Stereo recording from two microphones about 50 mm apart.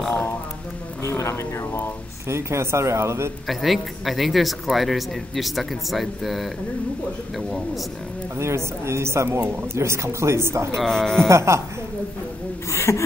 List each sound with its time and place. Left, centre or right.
1.0 s a sound: left
2.2 s speech: right
3.4 s speech: centre
8.4 s speech: right
10.8 s speech: centre
11.2 s speech: right
12.7 s speech: left